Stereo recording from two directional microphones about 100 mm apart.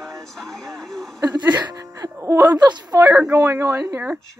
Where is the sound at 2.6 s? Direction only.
45° right (ahead or behind).